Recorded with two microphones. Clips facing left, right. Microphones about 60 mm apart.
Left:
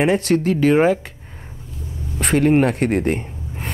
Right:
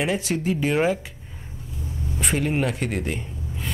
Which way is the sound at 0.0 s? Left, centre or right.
Left.